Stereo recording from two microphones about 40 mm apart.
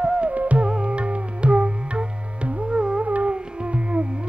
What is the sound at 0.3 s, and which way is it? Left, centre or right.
Music, right.